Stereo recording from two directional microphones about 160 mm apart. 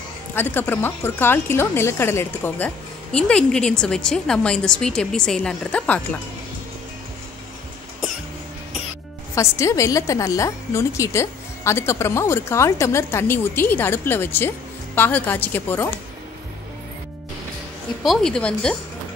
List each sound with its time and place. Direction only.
0.3 s speech: 15° left (ahead or behind)
9.3 s a woman's voice: 20° left (ahead or behind)
18.0 s speech: 5° left (ahead or behind)